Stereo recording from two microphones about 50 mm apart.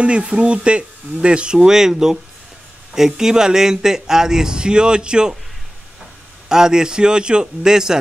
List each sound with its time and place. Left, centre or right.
0.0 s a man's voice: right
6.5 s a man's voice: centre